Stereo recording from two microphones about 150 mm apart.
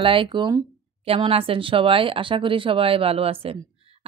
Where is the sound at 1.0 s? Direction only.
40° right (ahead or behind).